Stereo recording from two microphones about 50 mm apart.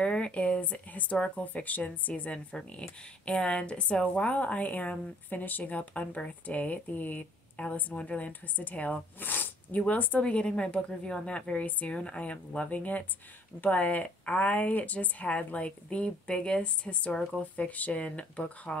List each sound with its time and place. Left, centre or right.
0.0 s a woman's voice: left